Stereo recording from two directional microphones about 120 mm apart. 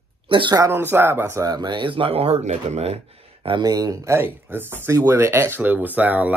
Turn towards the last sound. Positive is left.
turn(degrees=-10)  # may be behind; listen again after turning